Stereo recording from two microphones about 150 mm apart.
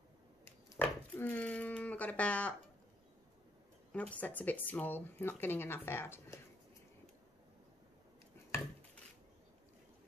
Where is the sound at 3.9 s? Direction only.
10° left (ahead or behind).